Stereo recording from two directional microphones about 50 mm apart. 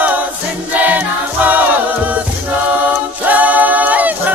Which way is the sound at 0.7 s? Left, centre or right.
Right.